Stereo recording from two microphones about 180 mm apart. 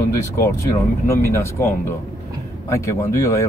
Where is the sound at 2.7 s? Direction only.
15° left (ahead or behind).